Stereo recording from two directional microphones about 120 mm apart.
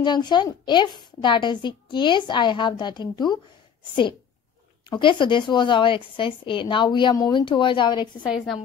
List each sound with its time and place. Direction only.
0.0 s a woman's voice: 40° left (ahead or behind)
4.8 s a woman's voice: 40° left (ahead or behind)